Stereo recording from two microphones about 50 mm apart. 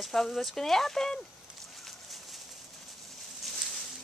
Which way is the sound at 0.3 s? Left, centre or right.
Centre.